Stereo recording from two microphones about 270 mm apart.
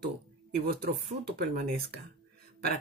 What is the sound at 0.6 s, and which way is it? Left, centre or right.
Speech, right.